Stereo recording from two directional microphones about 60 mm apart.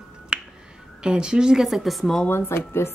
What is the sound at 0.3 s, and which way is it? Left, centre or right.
Finger snapping, centre.